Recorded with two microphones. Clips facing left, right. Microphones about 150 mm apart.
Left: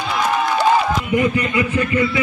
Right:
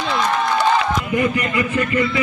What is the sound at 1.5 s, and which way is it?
Speech, 15° left (ahead or behind).